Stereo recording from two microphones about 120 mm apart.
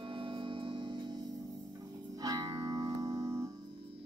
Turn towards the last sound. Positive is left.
turn(degrees=-30)  # may be behind; listen again after turning